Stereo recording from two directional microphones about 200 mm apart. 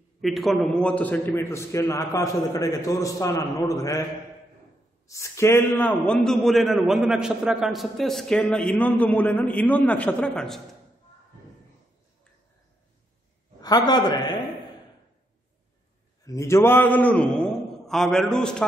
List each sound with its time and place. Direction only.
0.2 s a man's voice: centre (ahead or behind); by 4.0 s 15° left (ahead or behind)
5.0 s a man's voice: 15° left (ahead or behind)
13.6 s a man's voice: 20° left (ahead or behind)
16.3 s a man's voice: 15° left (ahead or behind)